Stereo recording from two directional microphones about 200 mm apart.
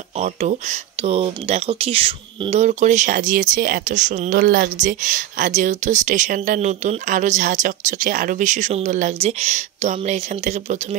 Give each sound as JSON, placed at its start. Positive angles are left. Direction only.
{"t": 0.2, "sound": "speech", "side_deg": -35}